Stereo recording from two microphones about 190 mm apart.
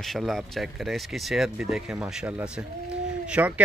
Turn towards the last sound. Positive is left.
turn(degrees=-5)  # may be behind; listen again after turning